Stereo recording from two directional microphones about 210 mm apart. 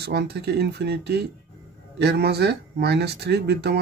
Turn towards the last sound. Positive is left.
turn(degrees=-50)  # may be behind; listen again after turning